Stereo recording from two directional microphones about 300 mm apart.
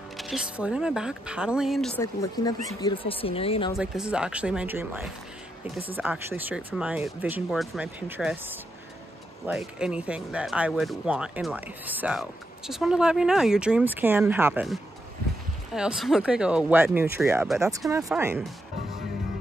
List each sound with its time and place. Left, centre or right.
0.2 s speech: centre
2.3 s speech: centre
3.7 s speech: centre